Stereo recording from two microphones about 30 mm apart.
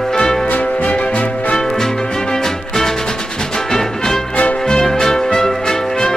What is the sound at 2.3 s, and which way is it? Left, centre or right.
Music, centre.